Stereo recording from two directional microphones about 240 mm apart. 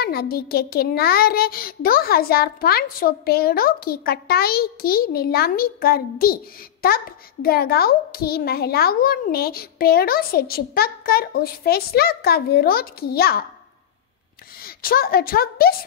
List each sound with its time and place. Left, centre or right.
0.0 s a child's voice: left
14.6 s a woman's voice: left